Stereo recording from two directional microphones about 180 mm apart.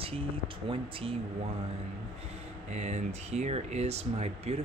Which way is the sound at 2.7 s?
40° right (ahead or behind).